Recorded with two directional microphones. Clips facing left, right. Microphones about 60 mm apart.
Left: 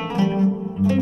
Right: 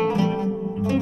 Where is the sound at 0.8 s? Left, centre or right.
Centre.